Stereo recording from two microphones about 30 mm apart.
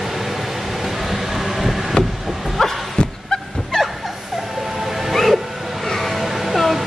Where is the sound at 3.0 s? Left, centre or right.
Left.